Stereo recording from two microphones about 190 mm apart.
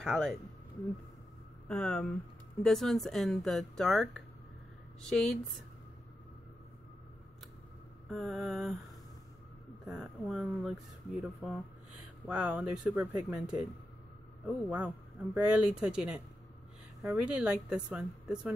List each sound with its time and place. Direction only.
0.0 s speech: centre (ahead or behind)
1.7 s speech: 5° left (ahead or behind)
8.1 s speech: centre (ahead or behind)
9.8 s speech: centre (ahead or behind)